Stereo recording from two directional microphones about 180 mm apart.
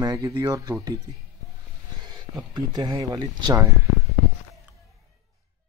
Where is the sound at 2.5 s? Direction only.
25° right (ahead or behind).